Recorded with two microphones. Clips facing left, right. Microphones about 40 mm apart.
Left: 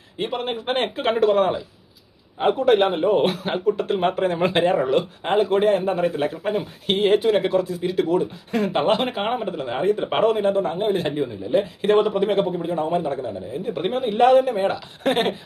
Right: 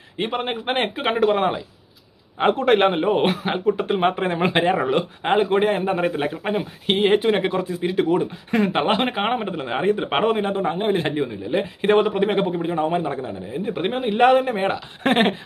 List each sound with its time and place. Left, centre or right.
0.2 s a man's voice: right
2.3 s a man's voice: right
14.2 s a man's voice: right